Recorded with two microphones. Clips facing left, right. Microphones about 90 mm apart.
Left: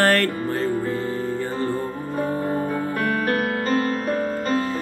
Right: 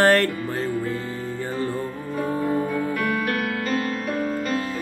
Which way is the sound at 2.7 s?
40° left (ahead or behind).